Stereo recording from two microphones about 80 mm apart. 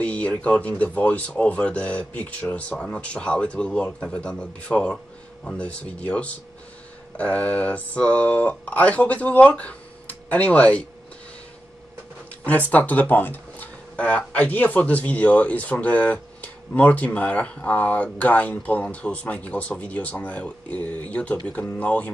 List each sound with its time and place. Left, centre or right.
0.0 s speech: centre
12.4 s speech: centre